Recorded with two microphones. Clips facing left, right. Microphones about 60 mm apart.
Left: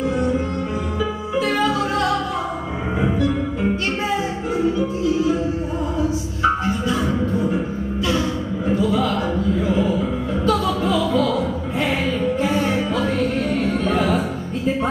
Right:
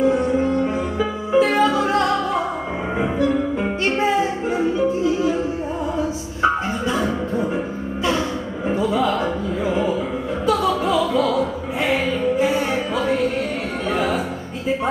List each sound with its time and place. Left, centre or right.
0.9 s music: right
8.6 s music: right; by 14.2 s centre